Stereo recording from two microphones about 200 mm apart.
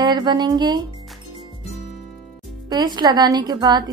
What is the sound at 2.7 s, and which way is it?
A woman's voice, 20° right (ahead or behind).